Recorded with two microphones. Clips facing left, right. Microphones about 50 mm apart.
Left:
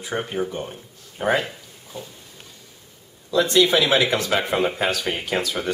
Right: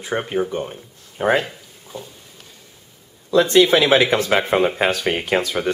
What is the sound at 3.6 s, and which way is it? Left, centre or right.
Speech, centre.